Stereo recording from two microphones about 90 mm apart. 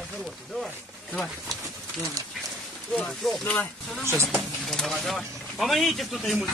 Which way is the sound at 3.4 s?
15° left (ahead or behind).